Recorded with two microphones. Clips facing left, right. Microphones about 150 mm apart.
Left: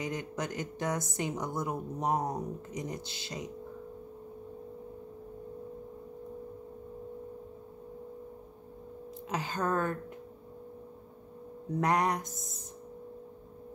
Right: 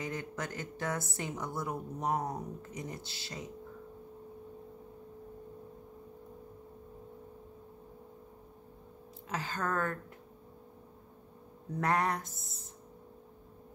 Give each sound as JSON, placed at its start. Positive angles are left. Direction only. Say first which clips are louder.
{"t": 0.0, "sound": "a woman's voice", "louder": "left 3 dB", "side_deg": 20}
{"t": 9.3, "sound": "a woman's voice", "louder": "left 3 dB", "side_deg": 20}
{"t": 11.8, "sound": "speech", "louder": "left 2 dB", "side_deg": 15}